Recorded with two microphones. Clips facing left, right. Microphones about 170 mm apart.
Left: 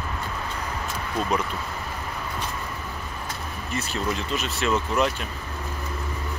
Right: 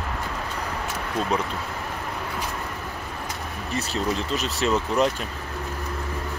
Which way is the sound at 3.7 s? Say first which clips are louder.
Right 2 dB; 35° right (ahead or behind).